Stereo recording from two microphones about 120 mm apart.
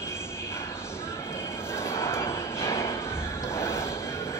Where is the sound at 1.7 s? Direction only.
20° left (ahead or behind).